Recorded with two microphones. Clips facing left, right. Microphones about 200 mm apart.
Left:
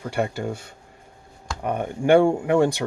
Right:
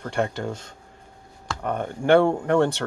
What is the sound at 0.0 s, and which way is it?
Speech, 5° left (ahead or behind).